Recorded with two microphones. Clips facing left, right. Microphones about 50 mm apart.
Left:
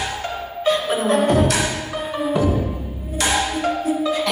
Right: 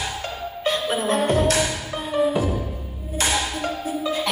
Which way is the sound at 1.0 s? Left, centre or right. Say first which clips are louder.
Left 3 dB; left.